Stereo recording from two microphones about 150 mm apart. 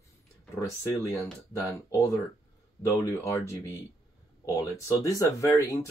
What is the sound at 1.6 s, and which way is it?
Speech, 20° left (ahead or behind).